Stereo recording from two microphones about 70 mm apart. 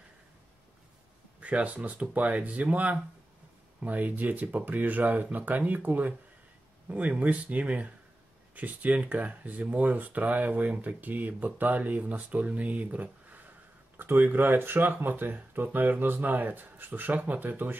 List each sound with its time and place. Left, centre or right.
1.4 s speech: centre